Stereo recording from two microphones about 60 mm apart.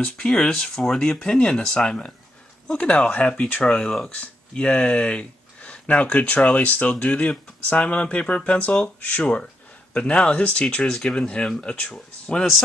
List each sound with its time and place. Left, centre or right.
0.0 s speech: centre